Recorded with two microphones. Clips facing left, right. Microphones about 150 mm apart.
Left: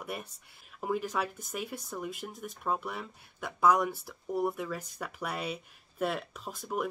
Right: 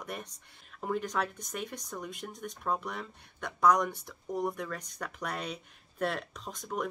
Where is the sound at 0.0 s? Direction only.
5° left (ahead or behind).